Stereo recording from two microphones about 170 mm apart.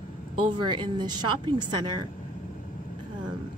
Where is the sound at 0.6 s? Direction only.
25° right (ahead or behind).